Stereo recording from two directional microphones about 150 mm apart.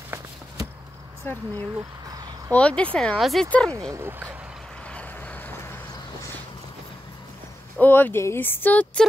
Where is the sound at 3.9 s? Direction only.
15° right (ahead or behind).